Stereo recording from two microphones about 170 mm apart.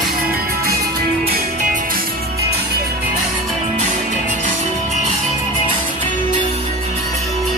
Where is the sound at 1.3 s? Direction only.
50° right (ahead or behind); by 2.6 s 70° right (ahead or behind).